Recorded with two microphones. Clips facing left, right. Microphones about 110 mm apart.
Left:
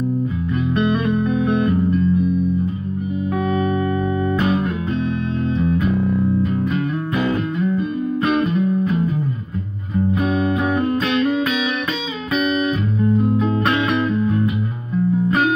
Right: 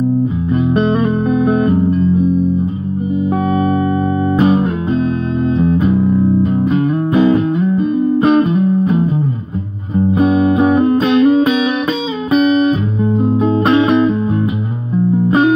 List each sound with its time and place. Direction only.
0.5 s music: 30° right (ahead or behind)
4.4 s music: 30° right (ahead or behind)
10.3 s music: 35° right (ahead or behind)
13.1 s music: 30° right (ahead or behind)
15.2 s music: 25° right (ahead or behind)